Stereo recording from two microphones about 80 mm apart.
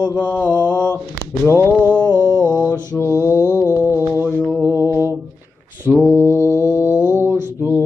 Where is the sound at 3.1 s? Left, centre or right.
Right.